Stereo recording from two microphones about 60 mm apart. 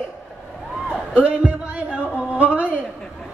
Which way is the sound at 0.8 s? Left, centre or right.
Centre.